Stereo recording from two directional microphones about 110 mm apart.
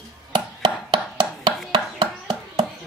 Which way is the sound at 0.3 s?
40° right (ahead or behind).